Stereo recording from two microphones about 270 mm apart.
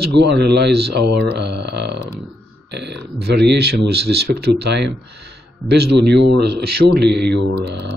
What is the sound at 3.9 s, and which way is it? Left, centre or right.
Speech, right.